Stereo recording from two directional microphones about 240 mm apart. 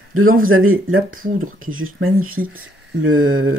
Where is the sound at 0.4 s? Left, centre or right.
Right.